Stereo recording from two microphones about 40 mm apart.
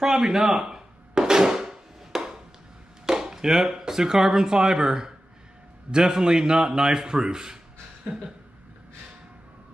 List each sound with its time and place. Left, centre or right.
0.0 s a sound: centre
3.1 s chop: centre
3.7 s a man's voice: centre